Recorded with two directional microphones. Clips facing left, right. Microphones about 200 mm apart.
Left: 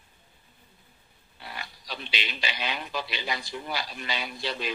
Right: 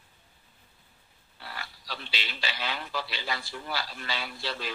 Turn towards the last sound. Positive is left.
turn(degrees=20)  # may be behind; listen again after turning